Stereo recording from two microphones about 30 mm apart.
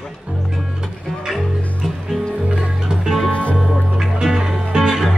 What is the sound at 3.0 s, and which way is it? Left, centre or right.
Music, centre.